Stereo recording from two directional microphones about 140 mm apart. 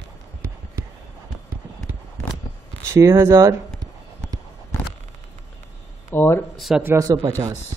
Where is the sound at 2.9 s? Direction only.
20° right (ahead or behind).